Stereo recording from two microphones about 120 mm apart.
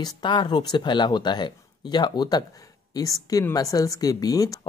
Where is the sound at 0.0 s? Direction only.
40° left (ahead or behind).